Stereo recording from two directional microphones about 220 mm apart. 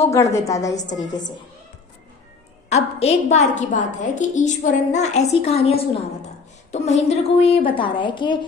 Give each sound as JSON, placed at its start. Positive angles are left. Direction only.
{"t": 0.3, "sound": "a woman's voice", "side_deg": 15}
{"t": 2.7, "sound": "a woman's voice", "side_deg": 30}